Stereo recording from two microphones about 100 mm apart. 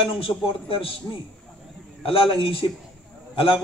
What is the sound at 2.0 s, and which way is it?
Speech, 65° left (ahead or behind).